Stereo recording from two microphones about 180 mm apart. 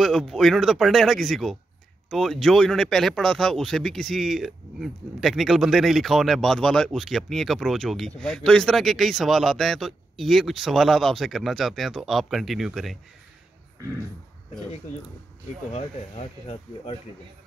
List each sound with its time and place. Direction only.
0.0 s speech: centre (ahead or behind)
15.7 s speech: 30° left (ahead or behind)